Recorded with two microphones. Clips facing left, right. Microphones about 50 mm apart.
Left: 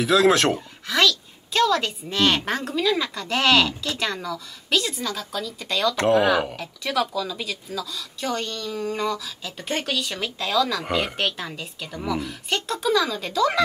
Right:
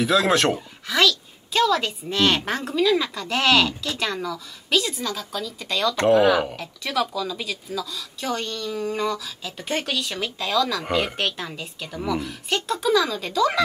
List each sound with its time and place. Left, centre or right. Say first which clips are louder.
0.0 s a woman's voice: left 1 dB; centre